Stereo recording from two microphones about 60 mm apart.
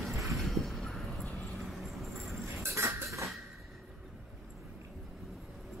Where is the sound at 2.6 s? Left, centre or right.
Right.